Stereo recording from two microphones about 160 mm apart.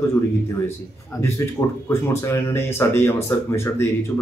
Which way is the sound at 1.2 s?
15° left (ahead or behind).